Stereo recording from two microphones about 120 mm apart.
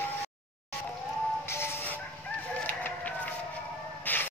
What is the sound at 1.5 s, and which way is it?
Music, 20° left (ahead or behind).